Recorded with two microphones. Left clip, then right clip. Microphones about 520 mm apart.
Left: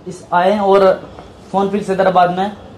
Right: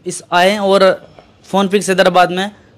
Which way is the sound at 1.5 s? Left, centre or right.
Right.